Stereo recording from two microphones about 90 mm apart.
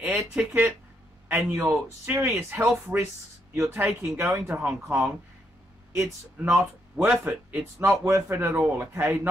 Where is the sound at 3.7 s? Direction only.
20° right (ahead or behind).